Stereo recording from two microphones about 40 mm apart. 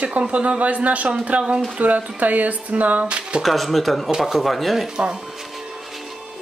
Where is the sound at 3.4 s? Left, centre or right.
Centre.